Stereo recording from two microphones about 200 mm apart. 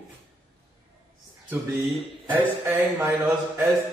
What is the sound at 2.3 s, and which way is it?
A man's voice, 10° right (ahead or behind).